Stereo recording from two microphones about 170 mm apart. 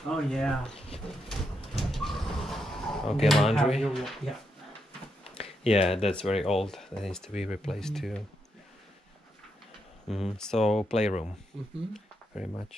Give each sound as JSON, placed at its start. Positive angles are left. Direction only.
{"t": 0.0, "sound": "speech", "side_deg": 5}
{"t": 0.7, "sound": "speech", "side_deg": 35}
{"t": 1.3, "sound": "a sound", "side_deg": 0}
{"t": 5.3, "sound": "a sound", "side_deg": 35}
{"t": 6.1, "sound": "speech", "side_deg": 0}
{"t": 10.0, "sound": "speech", "side_deg": 0}
{"t": 10.9, "sound": "speech", "side_deg": 40}
{"t": 11.9, "sound": "speech", "side_deg": 0}